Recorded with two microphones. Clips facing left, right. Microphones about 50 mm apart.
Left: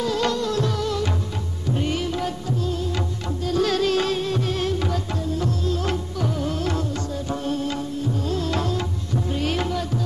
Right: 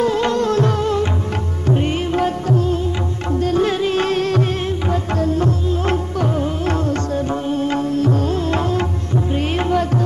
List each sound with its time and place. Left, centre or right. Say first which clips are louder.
0.0 s music: right 6 dB; right
3.5 s music: right 1 dB; right
7.5 s music: right 9 dB; right
7.9 s music: right 9 dB; right
8.3 s music: right 5 dB; right